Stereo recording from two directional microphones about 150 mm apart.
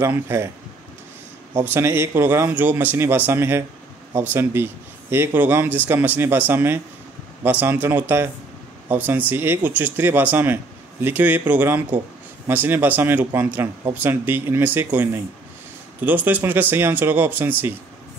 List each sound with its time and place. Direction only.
0.0 s speech: 15° right (ahead or behind)
1.6 s speech: 15° right (ahead or behind)